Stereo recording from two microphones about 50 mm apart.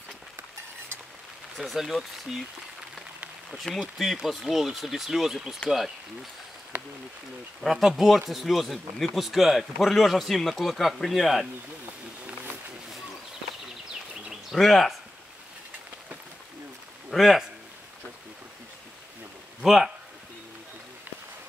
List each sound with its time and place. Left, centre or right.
1.6 s speech: centre
4.0 s speech: centre
6.7 s speech: right
7.6 s speech: centre
14.5 s speech: centre
17.1 s speech: centre
19.6 s speech: centre